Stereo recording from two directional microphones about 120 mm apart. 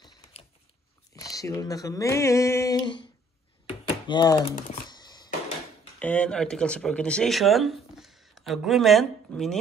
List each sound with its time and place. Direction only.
1.1 s speech: 30° left (ahead or behind)
3.6 s typing: 40° left (ahead or behind)
4.8 s a sound: 35° left (ahead or behind)
5.9 s speech: 10° left (ahead or behind)